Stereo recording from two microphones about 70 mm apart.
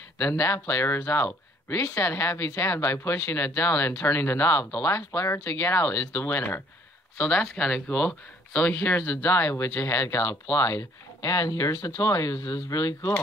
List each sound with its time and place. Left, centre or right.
0.2 s speech: left
7.2 s speech: centre; by 13.1 s left